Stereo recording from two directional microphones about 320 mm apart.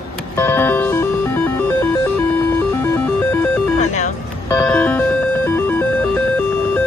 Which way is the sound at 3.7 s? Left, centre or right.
Left.